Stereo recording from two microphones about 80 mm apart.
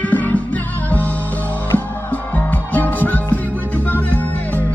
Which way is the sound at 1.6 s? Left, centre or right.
Left.